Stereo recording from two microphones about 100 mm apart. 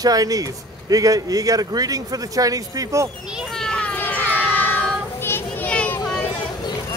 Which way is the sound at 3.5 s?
5° left (ahead or behind).